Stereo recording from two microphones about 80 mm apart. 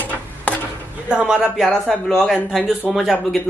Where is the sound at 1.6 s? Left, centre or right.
Centre.